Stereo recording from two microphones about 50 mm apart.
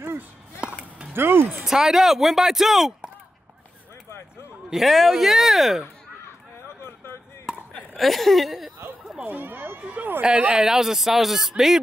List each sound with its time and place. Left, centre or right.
1.1 s speech: right
1.7 s speech: centre
4.6 s a man's voice: centre
7.5 s chop: centre
7.9 s a man's voice: centre
9.2 s speech: right
10.6 s speech: centre